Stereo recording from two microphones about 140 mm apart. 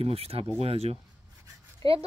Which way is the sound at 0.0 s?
45° right (ahead or behind).